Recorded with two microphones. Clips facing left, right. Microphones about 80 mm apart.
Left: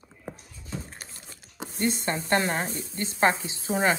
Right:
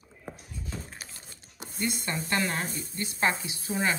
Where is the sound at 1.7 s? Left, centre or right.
Left.